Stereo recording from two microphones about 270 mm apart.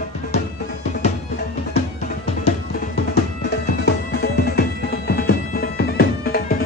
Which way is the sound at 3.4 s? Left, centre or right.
Left.